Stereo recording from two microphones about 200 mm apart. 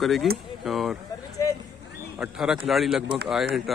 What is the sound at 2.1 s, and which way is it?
A man's voice, 5° right (ahead or behind).